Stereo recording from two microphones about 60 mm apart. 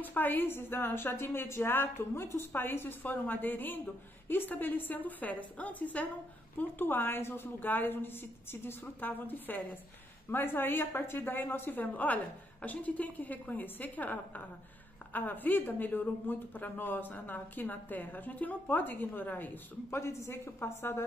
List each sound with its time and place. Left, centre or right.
0.0 s a woman's voice: left
20.0 s speech: left